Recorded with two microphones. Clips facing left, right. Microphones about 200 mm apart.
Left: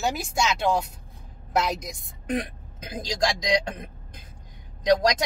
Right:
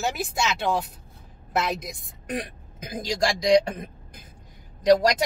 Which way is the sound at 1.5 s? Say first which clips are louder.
Left 1 dB; centre (ahead or behind).